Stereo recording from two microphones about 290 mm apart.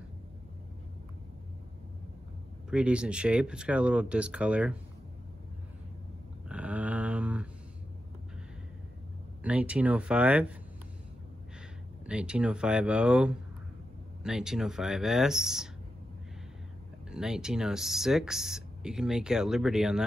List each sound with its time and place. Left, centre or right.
2.7 s speech: centre
6.5 s a sound: centre
9.4 s speech: centre
12.1 s speech: centre
17.1 s speech: centre